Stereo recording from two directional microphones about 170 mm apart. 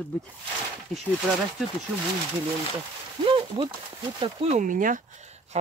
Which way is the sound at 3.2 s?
30° right (ahead or behind).